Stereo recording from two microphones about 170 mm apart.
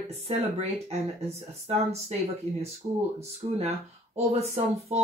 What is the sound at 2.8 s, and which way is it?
Speech, 35° right (ahead or behind).